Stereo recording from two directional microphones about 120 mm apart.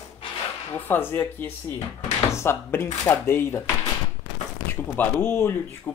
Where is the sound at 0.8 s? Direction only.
15° left (ahead or behind).